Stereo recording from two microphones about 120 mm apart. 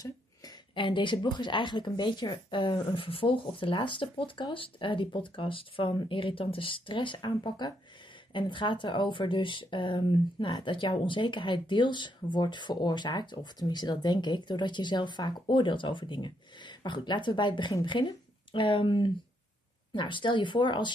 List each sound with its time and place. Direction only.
0.0 s a woman's voice: 40° left (ahead or behind)